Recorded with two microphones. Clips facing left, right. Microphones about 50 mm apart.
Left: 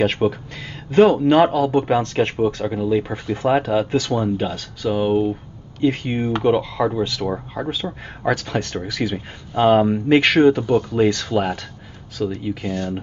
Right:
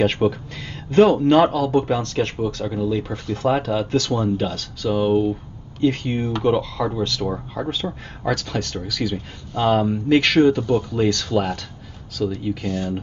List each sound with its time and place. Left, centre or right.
0.0 s speech: centre